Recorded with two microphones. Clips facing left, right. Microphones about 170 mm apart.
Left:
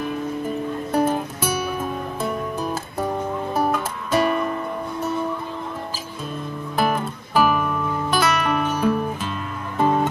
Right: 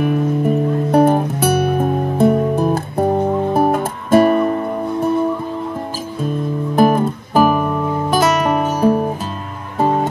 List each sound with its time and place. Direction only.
0.0 s music: 65° right (ahead or behind); by 5.1 s 40° right (ahead or behind)
6.7 s music: 45° right (ahead or behind)